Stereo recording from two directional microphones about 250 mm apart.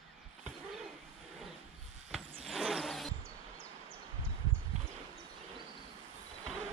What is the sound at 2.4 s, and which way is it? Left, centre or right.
Vehicle, centre.